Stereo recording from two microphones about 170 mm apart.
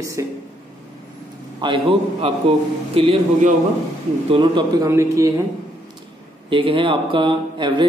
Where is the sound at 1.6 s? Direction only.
30° right (ahead or behind).